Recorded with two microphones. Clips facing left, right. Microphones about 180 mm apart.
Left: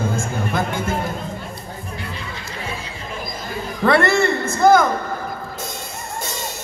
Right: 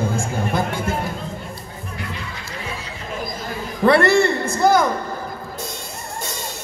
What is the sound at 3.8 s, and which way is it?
A man's voice, 30° right (ahead or behind).